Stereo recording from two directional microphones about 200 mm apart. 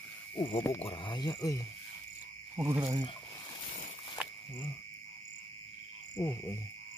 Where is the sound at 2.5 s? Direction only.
15° right (ahead or behind).